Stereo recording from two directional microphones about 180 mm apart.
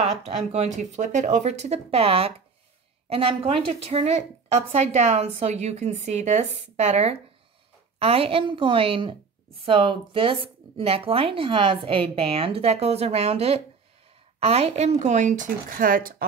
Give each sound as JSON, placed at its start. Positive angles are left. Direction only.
{"t": 0.2, "sound": "a woman's voice", "side_deg": -35}